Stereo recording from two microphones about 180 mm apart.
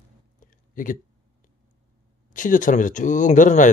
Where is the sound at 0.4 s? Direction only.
50° left (ahead or behind).